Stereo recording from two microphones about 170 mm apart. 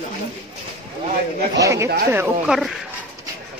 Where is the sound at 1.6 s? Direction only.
20° right (ahead or behind).